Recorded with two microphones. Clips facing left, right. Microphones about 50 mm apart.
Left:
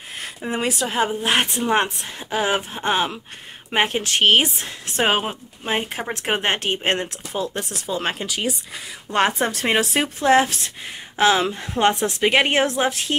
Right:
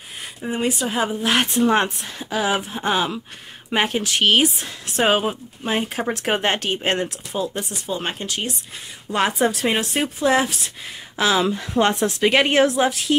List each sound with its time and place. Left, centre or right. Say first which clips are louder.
0.5 s speech: right 1 dB; left
0.8 s speech: even; left
7.3 s speech: right 1 dB; left
7.9 s speech: left 2 dB; left
9.1 s speech: even; left